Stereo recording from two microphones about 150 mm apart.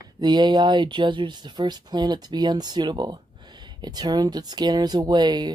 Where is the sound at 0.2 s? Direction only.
30° right (ahead or behind).